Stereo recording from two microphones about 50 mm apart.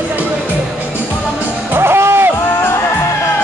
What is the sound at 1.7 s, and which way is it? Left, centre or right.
Music, right.